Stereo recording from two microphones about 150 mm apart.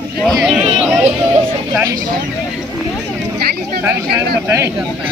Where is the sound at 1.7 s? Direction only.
25° right (ahead or behind).